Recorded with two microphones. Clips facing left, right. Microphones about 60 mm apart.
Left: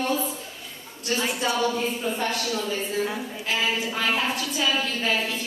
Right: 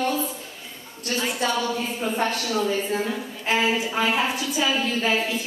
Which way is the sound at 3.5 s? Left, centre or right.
Right.